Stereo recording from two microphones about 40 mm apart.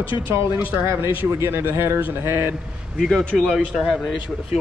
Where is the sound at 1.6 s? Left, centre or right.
Right.